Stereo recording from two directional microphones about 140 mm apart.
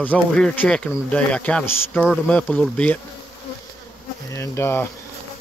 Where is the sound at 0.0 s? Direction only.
10° left (ahead or behind).